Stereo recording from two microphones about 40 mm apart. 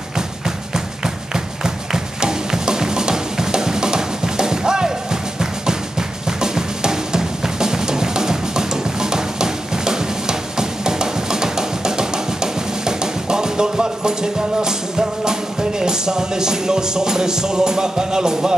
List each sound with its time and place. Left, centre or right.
0.7 s music: centre
5.4 s drum: centre
15.8 s music: centre